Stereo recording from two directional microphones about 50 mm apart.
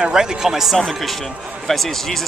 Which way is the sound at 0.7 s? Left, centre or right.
Centre.